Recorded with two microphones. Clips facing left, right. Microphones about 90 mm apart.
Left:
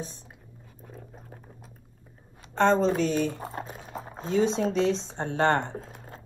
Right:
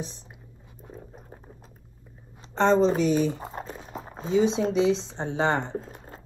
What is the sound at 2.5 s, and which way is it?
Speech, 15° right (ahead or behind).